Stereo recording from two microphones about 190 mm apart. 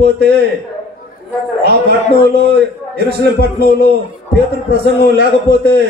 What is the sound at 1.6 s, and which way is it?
A man's voice, 60° right (ahead or behind).